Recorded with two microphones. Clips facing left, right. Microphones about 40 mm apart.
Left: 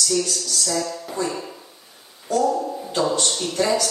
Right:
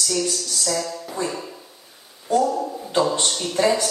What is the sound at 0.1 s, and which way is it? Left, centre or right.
Speech, right.